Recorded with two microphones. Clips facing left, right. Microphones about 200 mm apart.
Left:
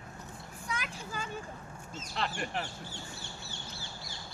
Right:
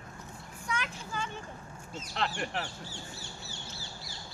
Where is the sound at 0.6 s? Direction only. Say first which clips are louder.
Right 3 dB; 35° left (ahead or behind).